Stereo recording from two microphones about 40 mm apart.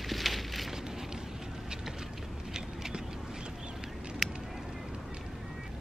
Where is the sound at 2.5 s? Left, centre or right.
Centre.